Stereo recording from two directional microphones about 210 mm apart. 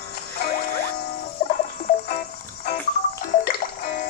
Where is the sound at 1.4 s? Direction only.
50° left (ahead or behind).